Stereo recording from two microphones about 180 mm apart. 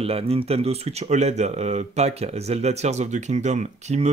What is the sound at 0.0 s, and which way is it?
Speech, 35° right (ahead or behind).